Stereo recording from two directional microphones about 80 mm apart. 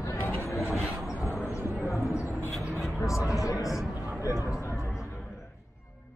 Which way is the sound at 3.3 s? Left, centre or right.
Left.